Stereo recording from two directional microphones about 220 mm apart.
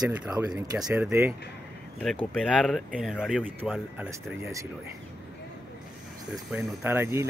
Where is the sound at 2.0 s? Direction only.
5° left (ahead or behind); by 4.7 s 10° right (ahead or behind).